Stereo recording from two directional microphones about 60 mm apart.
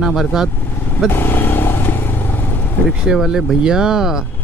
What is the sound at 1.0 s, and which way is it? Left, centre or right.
Vehicle, left.